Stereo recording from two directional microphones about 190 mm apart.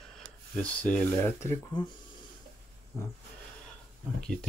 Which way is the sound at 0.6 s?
5° left (ahead or behind).